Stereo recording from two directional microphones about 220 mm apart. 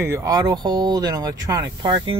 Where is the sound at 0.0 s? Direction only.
15° right (ahead or behind).